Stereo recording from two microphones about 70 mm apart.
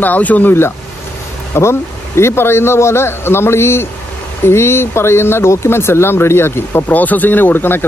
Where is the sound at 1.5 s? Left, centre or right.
Left.